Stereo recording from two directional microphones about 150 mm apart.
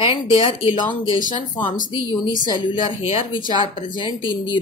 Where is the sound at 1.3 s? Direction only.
30° left (ahead or behind).